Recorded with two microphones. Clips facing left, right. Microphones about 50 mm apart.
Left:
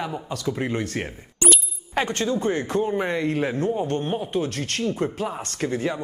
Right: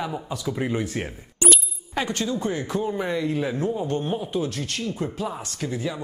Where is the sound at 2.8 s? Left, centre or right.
Left.